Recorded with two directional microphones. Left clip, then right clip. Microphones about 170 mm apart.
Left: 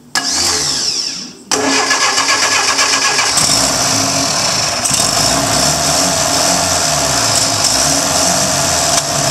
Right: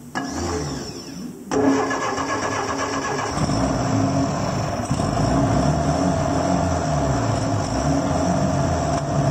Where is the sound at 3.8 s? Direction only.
15° left (ahead or behind).